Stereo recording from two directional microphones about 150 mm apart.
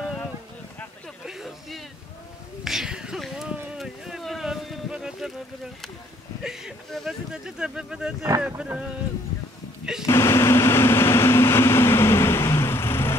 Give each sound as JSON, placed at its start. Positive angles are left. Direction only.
{"t": 1.2, "sound": "a sound", "side_deg": 0}
{"t": 6.4, "sound": "speech", "side_deg": 0}
{"t": 10.0, "sound": "vehicle", "side_deg": 15}